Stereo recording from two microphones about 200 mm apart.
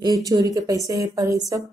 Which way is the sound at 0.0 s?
20° right (ahead or behind).